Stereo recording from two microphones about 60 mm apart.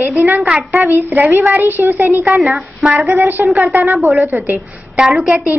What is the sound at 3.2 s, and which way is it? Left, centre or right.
A woman's voice, right.